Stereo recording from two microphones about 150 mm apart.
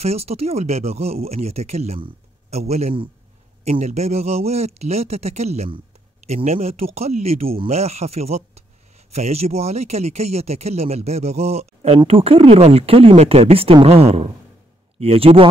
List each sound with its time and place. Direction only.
0.0 s speech: 45° right (ahead or behind)